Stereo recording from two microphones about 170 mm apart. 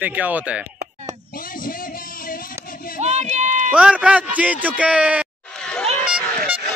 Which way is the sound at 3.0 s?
40° right (ahead or behind).